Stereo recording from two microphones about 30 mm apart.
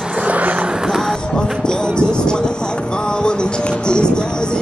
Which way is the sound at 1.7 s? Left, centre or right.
Left.